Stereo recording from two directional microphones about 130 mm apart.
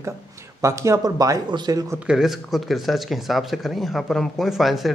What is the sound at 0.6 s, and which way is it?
Speech, 25° right (ahead or behind).